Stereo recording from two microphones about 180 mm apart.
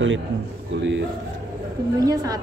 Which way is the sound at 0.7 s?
80° right.